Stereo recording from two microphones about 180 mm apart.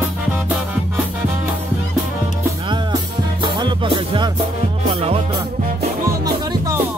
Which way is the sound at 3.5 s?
25° right (ahead or behind).